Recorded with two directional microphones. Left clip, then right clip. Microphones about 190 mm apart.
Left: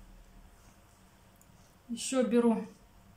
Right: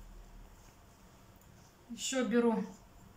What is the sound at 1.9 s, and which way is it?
Speech, 20° left (ahead or behind).